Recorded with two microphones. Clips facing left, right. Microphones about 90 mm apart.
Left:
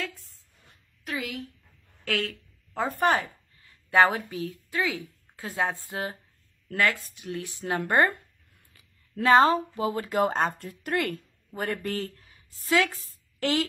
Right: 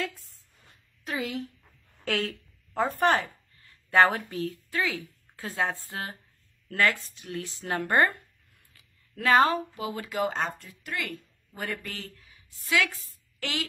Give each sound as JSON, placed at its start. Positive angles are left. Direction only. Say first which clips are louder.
{"t": 1.0, "sound": "a woman's voice", "louder": "right 2 dB", "side_deg": -25}
{"t": 2.7, "sound": "a woman's voice", "louder": "even", "side_deg": 0}
{"t": 4.6, "sound": "a woman's voice", "louder": "left 1 dB", "side_deg": 20}
{"t": 6.7, "sound": "speech", "louder": "even", "side_deg": 5}
{"t": 7.2, "sound": "a woman's voice", "louder": "left 2 dB", "side_deg": 15}
{"t": 12.9, "sound": "a woman's voice", "louder": "left 2 dB", "side_deg": 0}
{"t": 13.4, "sound": "speech", "louder": "left 7 dB", "side_deg": 40}